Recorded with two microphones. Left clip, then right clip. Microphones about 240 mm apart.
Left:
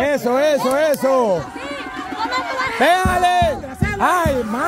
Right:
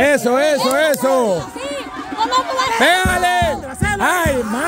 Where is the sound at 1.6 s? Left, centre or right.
Right.